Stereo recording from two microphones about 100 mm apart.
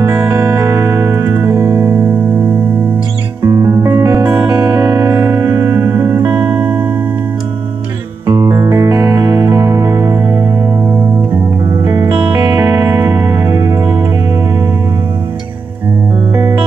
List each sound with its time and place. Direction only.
0.0 s music: 40° right (ahead or behind); by 2.5 s 20° right (ahead or behind)
3.4 s music: 30° right (ahead or behind)
8.3 s music: 35° right (ahead or behind)
11.8 s music: 35° right (ahead or behind)
12.2 s music: 55° right (ahead or behind)